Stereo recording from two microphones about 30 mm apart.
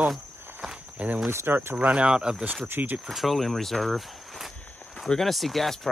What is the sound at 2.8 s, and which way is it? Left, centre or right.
Speech, right.